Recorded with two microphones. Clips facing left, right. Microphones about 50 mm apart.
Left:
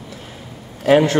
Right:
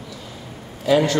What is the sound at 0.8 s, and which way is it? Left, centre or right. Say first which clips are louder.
Speech: left 4 dB; left.